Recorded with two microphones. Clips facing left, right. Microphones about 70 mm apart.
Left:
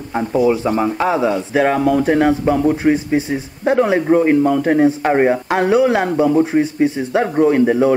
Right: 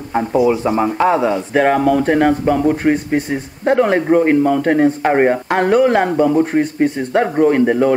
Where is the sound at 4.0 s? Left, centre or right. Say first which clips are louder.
Even; centre.